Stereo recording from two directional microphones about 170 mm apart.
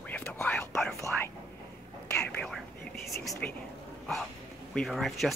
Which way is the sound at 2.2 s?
5° left (ahead or behind).